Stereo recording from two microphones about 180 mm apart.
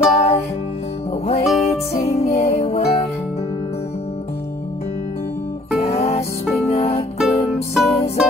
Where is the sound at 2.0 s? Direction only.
35° left (ahead or behind).